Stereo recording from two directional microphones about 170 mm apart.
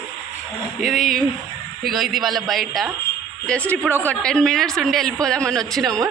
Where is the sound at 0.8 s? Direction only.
Centre (ahead or behind).